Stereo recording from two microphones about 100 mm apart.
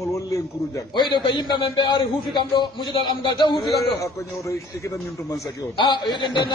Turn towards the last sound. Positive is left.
turn(degrees=50)  # may be behind; listen again after turning